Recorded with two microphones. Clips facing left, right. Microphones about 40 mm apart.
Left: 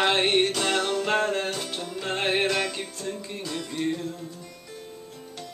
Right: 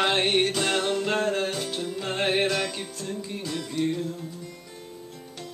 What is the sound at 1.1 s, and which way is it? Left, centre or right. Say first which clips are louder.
Music: left 1 dB; centre.